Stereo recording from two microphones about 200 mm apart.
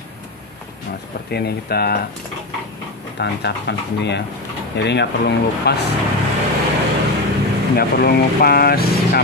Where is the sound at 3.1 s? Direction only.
60° left (ahead or behind).